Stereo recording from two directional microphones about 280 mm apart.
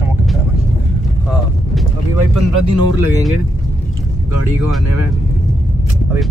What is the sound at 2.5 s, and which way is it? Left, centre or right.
Speech, right.